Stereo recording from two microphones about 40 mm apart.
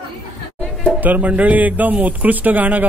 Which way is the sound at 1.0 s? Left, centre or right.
Right.